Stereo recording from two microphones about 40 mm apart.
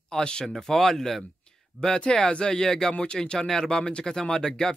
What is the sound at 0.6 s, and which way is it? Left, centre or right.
Speech, centre.